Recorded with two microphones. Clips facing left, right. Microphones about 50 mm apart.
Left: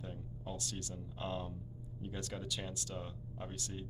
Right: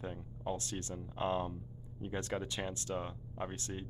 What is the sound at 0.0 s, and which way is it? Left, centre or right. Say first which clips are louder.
Speech: right 5 dB; right.